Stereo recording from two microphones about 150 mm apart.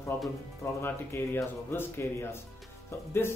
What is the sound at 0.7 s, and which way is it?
Speech, 15° left (ahead or behind).